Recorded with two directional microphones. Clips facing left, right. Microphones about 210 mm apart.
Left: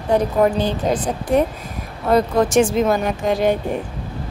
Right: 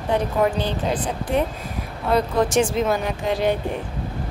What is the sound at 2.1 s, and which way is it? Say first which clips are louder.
Speech: left 4 dB; 45° left (ahead or behind).